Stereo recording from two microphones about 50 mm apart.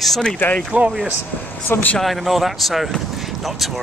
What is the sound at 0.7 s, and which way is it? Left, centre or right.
Speech, right.